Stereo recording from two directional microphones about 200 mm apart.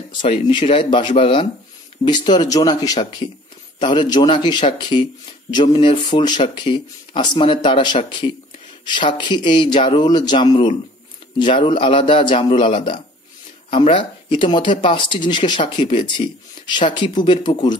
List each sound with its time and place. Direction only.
0.5 s speech: 25° left (ahead or behind)